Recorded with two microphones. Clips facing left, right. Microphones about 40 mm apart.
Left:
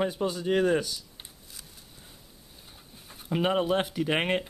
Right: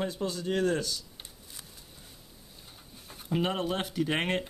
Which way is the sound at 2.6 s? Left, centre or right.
Centre.